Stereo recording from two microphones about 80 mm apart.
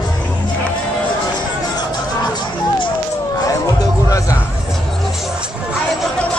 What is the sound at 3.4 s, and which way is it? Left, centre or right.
Music, left.